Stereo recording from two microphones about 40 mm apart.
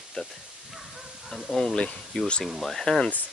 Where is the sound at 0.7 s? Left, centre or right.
Centre.